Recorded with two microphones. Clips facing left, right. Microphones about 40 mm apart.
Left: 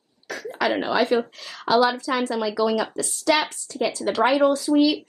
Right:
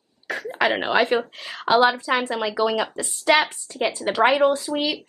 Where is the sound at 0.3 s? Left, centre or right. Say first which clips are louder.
Right 2 dB; right.